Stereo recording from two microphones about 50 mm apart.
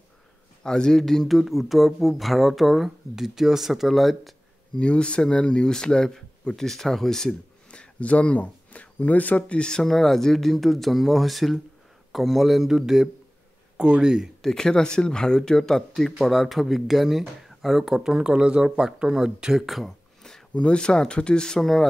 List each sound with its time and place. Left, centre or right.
0.7 s speech: centre
4.7 s speech: centre
9.8 s speech: centre
13.7 s speech: centre
14.4 s speech: centre
20.5 s speech: left
21.5 s speech: centre